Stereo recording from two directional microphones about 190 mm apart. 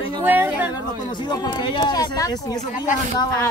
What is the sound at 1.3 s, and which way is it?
Speech, 25° left (ahead or behind).